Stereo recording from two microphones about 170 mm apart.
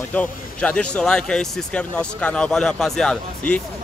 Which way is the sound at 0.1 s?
5° left (ahead or behind).